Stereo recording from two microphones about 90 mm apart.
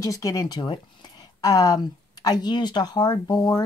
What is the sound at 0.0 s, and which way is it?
Speech, 40° left (ahead or behind).